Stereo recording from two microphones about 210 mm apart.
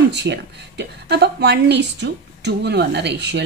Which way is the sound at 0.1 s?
55° right (ahead or behind).